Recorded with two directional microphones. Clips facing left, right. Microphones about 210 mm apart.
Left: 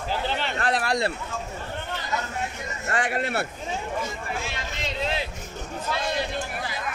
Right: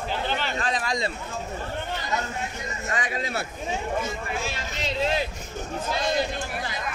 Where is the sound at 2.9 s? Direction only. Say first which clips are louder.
Left 4 dB; 65° left (ahead or behind).